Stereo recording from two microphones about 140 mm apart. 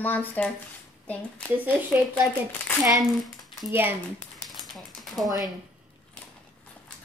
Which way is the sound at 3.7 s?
15° right (ahead or behind).